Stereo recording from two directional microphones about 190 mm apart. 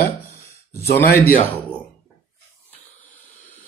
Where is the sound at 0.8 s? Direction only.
55° left (ahead or behind).